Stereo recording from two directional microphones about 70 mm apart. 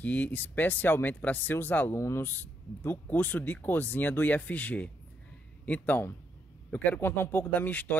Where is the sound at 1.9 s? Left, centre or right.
Left.